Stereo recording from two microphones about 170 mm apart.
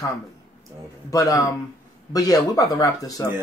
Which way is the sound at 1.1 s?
20° left (ahead or behind).